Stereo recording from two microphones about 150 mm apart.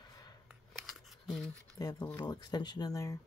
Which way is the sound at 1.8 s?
25° left (ahead or behind).